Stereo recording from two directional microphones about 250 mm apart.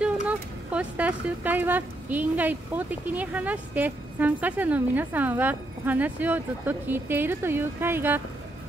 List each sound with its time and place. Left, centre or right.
0.0 s speech: centre